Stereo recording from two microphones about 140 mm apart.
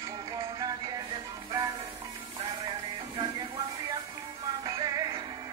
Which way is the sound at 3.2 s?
30° right (ahead or behind).